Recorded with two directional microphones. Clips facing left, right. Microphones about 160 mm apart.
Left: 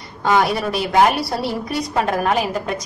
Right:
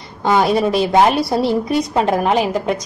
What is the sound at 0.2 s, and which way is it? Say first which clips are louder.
A woman's voice: right 3 dB; 25° right (ahead or behind).